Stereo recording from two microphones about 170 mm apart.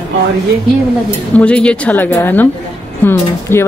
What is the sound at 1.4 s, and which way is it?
Speech, 5° left (ahead or behind).